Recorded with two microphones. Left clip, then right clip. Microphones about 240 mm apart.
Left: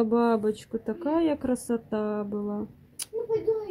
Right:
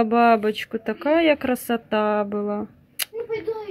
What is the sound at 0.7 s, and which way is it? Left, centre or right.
Speech, centre.